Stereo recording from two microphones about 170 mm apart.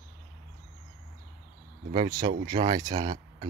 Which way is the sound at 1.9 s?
25° right (ahead or behind).